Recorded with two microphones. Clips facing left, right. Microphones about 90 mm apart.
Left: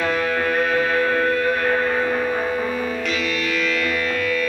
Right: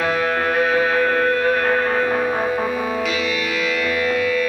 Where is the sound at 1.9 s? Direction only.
45° right (ahead or behind).